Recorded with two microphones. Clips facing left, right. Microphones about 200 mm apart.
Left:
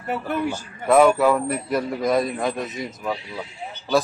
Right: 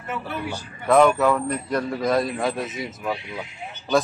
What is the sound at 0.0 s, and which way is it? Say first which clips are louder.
Speech: left 5 dB; 45° left (ahead or behind).